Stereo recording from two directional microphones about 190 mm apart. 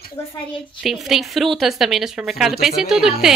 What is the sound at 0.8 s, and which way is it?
Speech, centre (ahead or behind).